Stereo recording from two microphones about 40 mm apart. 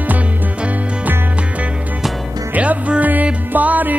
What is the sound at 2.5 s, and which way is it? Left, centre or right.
Music, right.